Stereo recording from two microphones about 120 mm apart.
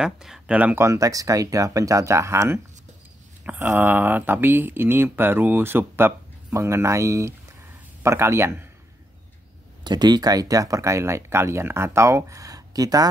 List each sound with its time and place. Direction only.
0.0 s speech: 5° right (ahead or behind)
0.8 s speech: 25° right (ahead or behind)
9.8 s speech: 35° right (ahead or behind)